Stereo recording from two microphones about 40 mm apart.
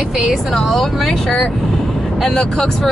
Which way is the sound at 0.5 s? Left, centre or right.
Centre.